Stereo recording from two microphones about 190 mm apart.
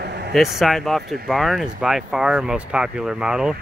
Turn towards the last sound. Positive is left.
turn(degrees=-5)  # may be behind; listen again after turning